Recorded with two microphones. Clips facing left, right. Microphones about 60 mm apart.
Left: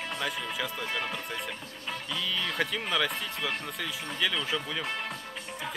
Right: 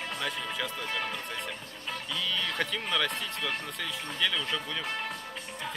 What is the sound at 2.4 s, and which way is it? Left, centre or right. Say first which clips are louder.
Speech: left 1 dB; centre.